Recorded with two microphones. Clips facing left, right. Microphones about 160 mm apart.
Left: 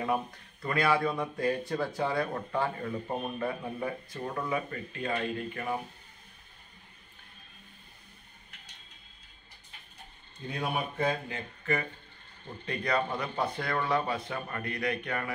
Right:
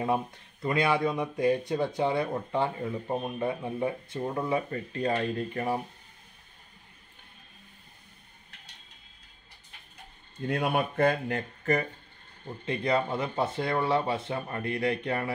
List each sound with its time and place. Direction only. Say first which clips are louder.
0.0 s speech: right 2 dB; 25° right (ahead or behind)
10.4 s speech: right 6 dB; 65° right (ahead or behind)
11.6 s speech: right 4 dB; 40° right (ahead or behind)
12.6 s speech: right 3 dB; 25° right (ahead or behind)